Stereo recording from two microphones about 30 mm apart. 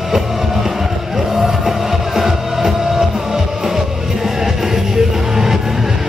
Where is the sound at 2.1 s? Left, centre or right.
Centre.